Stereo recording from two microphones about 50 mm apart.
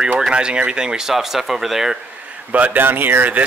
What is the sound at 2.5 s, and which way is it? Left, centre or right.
Speech, right.